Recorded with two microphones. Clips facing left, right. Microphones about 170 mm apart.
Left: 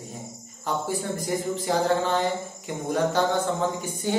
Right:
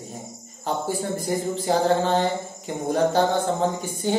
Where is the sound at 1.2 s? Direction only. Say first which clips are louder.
Right 3 dB; 35° right (ahead or behind).